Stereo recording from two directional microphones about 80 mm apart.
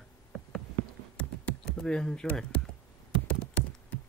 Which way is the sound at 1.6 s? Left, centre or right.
Centre.